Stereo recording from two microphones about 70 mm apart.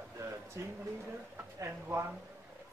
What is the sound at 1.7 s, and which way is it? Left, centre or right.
Speech, right.